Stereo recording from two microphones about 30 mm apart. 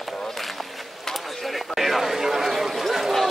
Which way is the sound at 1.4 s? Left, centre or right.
Centre.